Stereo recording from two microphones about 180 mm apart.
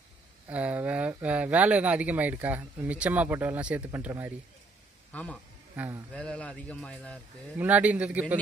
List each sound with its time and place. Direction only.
0.5 s speech: 10° right (ahead or behind)
5.1 s speech: 5° left (ahead or behind)
5.8 s speech: 15° right (ahead or behind)
6.1 s speech: 5° left (ahead or behind)
7.5 s speech: 10° right (ahead or behind)